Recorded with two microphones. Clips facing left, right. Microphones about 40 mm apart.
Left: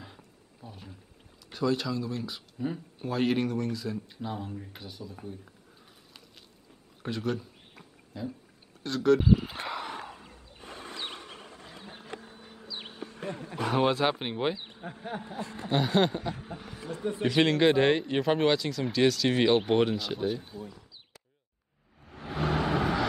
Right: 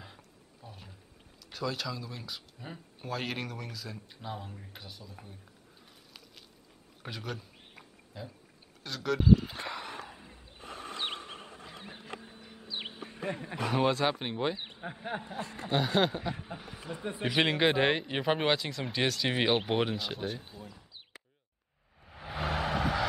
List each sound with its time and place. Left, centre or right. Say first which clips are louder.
0.0 s a sound: left 2 dB; centre
1.5 s speech: left 7 dB; centre
7.0 s a sound: left 8 dB; centre
8.8 s speech: left 5 dB; centre
10.0 s a sound: left 4 dB; centre
12.6 s bee: right 2 dB; right
13.0 s wild animals: left 1 dB; right
13.7 s speech: left 2 dB; centre
14.6 s speech: right 1 dB; centre
15.4 s speech: left 1 dB; right
15.7 s speech: left 2 dB; centre
22.0 s vehicle: left 4 dB; centre